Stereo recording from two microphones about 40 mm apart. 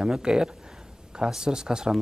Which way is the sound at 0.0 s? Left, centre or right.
Centre.